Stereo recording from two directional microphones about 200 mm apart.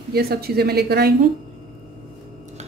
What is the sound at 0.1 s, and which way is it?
Speech, 50° right (ahead or behind).